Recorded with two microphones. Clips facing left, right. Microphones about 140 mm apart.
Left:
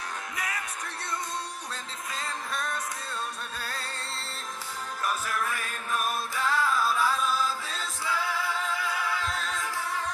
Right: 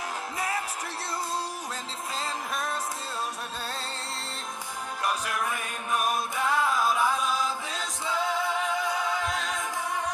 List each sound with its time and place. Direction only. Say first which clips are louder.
0.4 s music: right 5 dB; 30° right (ahead or behind)
2.1 s music: right 2 dB; 25° right (ahead or behind)
5.0 s music: right 1 dB; 15° right (ahead or behind)